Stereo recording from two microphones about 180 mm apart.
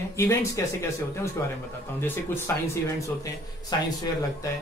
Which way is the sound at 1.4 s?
15° left (ahead or behind).